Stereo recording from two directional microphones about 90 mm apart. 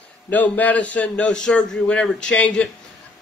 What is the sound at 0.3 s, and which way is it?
A man's voice, 15° left (ahead or behind).